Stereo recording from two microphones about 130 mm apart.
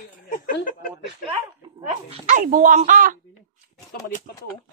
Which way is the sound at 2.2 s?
90° right.